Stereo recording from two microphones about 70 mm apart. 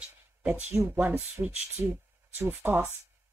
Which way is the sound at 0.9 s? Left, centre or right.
Right.